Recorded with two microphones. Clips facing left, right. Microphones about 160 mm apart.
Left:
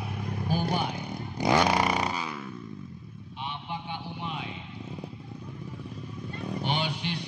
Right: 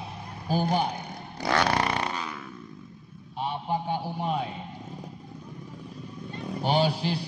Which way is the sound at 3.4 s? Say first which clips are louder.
Right 8 dB; 40° right (ahead or behind).